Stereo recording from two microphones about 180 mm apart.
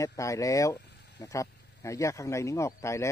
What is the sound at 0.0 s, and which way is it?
Speech, 15° left (ahead or behind).